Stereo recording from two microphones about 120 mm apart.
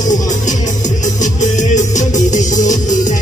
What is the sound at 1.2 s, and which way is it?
Music, 90° left.